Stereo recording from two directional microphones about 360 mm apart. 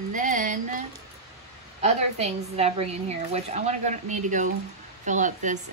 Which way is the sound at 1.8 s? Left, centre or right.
Centre.